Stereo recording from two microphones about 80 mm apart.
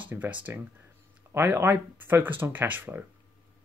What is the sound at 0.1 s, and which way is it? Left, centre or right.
Speech, right.